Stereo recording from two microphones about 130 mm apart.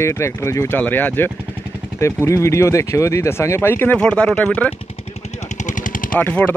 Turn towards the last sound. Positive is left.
turn(degrees=10)  # may be behind; listen again after turning